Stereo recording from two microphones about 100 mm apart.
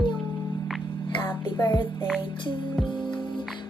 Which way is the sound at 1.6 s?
45° left (ahead or behind).